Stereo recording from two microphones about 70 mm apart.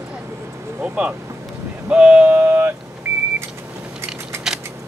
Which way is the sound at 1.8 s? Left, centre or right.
Centre.